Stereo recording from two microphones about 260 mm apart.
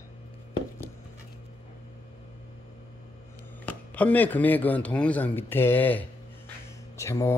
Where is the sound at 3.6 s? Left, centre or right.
Centre.